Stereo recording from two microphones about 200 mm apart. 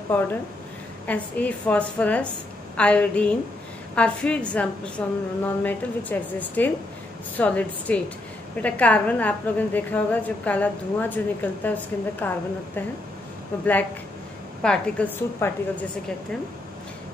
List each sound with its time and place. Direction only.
1.0 s a woman's voice: 5° left (ahead or behind)
14.6 s a woman's voice: 5° left (ahead or behind)